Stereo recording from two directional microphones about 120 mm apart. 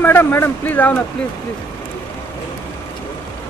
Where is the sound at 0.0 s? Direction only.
20° left (ahead or behind).